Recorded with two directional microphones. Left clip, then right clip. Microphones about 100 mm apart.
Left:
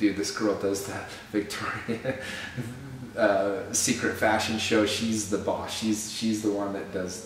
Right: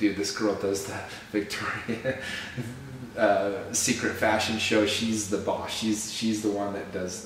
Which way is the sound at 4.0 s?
15° left (ahead or behind).